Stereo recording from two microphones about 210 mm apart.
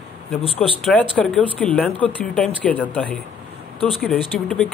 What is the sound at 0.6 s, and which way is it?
Speech, centre (ahead or behind).